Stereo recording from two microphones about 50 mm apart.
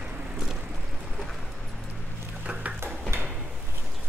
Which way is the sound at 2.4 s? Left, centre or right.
Right.